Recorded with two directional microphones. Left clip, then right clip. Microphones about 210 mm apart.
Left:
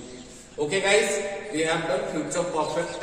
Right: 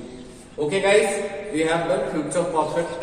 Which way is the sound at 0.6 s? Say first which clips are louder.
Right 3 dB; 15° left (ahead or behind).